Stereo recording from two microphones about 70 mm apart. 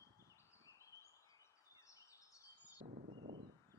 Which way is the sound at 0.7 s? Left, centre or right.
Left.